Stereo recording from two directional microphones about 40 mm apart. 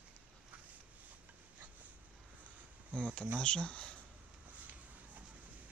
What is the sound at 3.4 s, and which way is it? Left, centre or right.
Speech, left.